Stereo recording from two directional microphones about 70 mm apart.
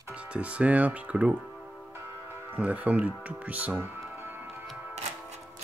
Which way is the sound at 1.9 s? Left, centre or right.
Right.